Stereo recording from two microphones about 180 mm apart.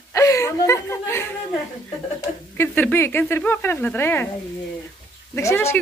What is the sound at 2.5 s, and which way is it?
Speech, 10° left (ahead or behind).